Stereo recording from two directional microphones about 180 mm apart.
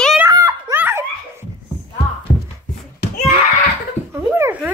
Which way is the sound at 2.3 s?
40° left (ahead or behind).